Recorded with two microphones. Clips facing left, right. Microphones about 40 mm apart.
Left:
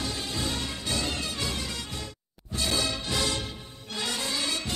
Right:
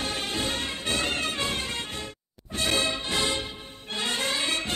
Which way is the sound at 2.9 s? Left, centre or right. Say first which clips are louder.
Right 2 dB; right.